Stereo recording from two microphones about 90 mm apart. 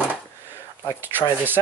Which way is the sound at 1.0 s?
20° right (ahead or behind).